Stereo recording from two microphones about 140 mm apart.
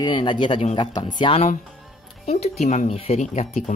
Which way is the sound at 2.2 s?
50° left (ahead or behind).